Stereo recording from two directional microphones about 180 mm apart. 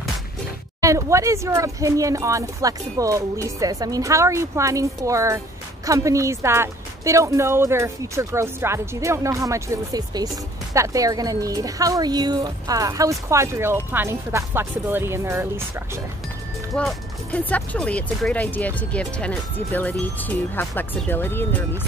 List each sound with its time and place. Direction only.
0.7 s a woman's voice: 15° right (ahead or behind)
16.7 s speech: 5° left (ahead or behind)